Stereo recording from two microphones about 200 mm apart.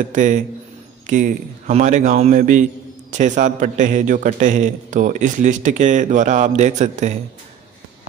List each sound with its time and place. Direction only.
0.1 s a man's voice: 40° right (ahead or behind)